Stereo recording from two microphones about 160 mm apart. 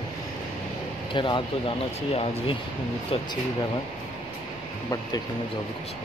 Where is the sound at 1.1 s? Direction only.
30° left (ahead or behind).